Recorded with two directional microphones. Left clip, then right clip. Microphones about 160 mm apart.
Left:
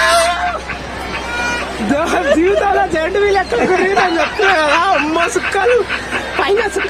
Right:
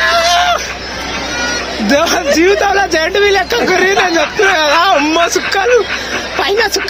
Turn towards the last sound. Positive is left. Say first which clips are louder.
# right 2 dB
turn(degrees=0)  # may be behind; listen again after turning